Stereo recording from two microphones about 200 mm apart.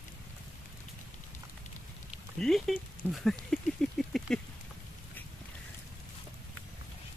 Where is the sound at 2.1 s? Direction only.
Centre (ahead or behind).